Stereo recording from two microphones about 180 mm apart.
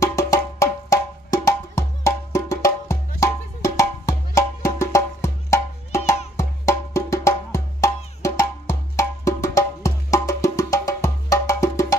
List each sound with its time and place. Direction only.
0.0 s music: 15° left (ahead or behind)